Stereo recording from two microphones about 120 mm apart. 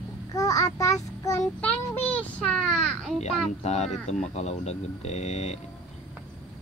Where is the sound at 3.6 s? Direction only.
70° left (ahead or behind).